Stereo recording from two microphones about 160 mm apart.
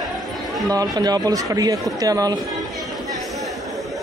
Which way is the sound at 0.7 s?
25° right (ahead or behind).